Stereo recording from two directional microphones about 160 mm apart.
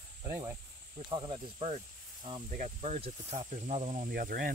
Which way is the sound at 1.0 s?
30° right (ahead or behind).